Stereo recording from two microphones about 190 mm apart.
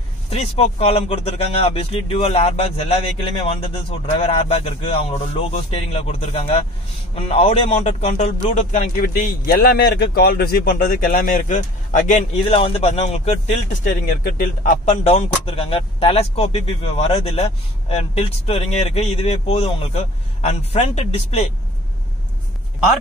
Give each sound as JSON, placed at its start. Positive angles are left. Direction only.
{"t": 0.3, "sound": "a man's voice", "side_deg": 30}